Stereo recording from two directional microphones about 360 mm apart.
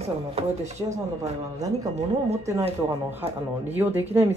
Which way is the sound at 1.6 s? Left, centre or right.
Centre.